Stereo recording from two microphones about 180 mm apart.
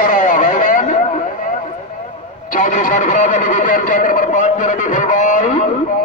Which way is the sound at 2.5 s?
45° left (ahead or behind).